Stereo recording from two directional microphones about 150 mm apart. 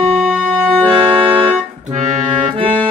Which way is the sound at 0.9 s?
35° right (ahead or behind).